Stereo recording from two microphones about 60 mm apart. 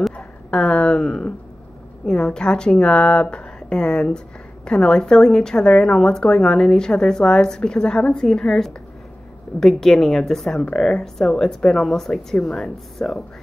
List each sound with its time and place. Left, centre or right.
0.5 s a woman's voice: centre